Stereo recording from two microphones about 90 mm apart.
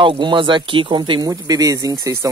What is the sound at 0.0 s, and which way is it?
Speech, 65° right (ahead or behind).